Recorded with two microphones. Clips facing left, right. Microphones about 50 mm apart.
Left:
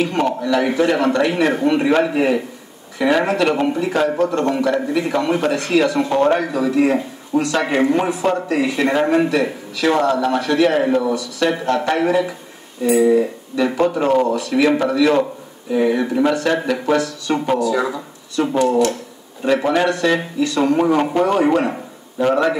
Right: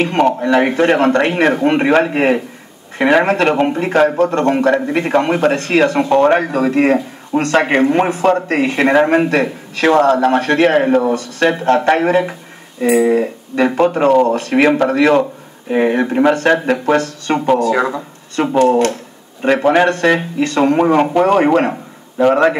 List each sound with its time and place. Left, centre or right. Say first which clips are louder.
0.0 s speech: right 5 dB; right